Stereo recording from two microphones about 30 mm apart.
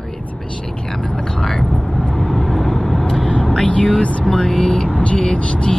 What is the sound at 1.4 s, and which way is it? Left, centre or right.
Speech, centre.